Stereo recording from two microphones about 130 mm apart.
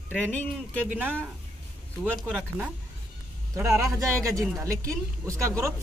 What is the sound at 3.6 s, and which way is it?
A man's voice, 15° right (ahead or behind).